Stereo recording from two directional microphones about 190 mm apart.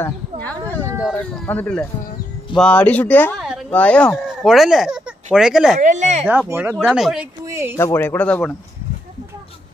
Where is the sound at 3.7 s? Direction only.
5° left (ahead or behind).